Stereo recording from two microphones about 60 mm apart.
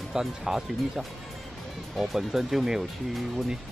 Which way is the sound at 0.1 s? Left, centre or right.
Centre.